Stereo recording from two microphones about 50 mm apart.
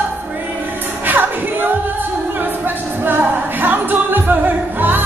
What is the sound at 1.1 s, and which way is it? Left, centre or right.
Music, right.